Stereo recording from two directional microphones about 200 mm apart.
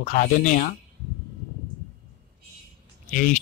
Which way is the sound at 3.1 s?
40° left (ahead or behind).